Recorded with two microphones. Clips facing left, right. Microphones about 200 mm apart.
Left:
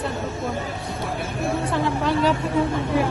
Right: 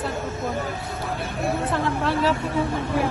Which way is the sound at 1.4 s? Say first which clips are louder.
Left 1 dB; centre (ahead or behind).